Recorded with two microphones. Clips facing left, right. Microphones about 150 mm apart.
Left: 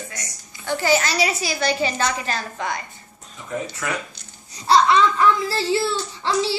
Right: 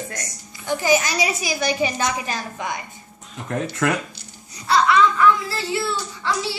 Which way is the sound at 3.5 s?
75° right (ahead or behind).